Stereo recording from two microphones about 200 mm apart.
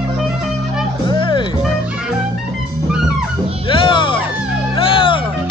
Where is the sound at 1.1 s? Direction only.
25° left (ahead or behind).